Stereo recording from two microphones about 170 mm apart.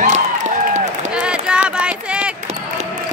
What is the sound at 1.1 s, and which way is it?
Run, 5° right (ahead or behind).